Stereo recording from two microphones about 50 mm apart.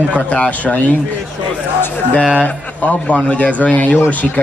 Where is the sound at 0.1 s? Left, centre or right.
Left.